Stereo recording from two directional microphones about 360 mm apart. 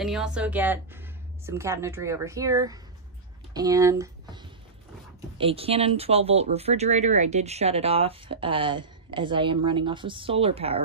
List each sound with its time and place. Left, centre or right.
0.0 s a woman's voice: centre